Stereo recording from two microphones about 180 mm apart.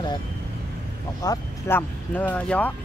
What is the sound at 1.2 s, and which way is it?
Speech, 15° left (ahead or behind).